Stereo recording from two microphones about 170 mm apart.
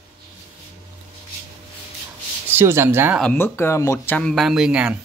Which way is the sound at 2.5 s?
15° right (ahead or behind).